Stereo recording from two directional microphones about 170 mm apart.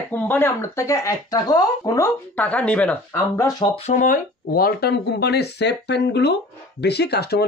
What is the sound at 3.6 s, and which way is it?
Speech, 35° left (ahead or behind).